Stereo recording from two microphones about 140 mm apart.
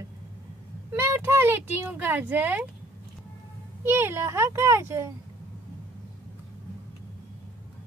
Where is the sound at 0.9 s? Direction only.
15° right (ahead or behind).